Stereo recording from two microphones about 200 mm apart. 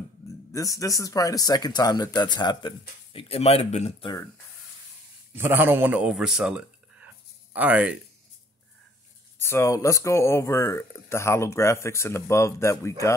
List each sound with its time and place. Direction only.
0.5 s speech: 15° left (ahead or behind); by 4.1 s 30° left (ahead or behind)
5.3 s a man's voice: 10° right (ahead or behind)
9.4 s speech: 15° left (ahead or behind)